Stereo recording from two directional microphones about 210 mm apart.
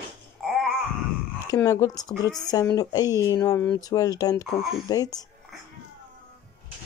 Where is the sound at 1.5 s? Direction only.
15° left (ahead or behind).